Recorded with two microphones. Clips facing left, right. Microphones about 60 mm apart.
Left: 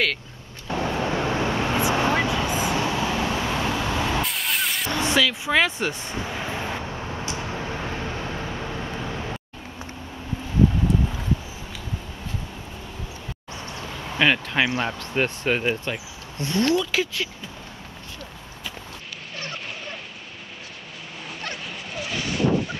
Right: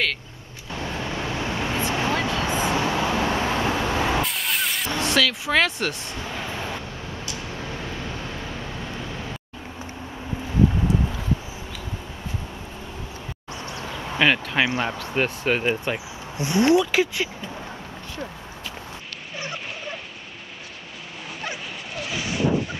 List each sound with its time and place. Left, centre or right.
0.7 s vehicle: left
2.2 s vehicle: centre
2.7 s vehicle: right
3.9 s vehicle: centre
4.2 s vehicle: centre
7.2 s a sound: left
8.5 s vehicle: centre
10.9 s clip-clop: centre
14.1 s speech: centre
19.3 s a sound: centre
21.4 s dog: centre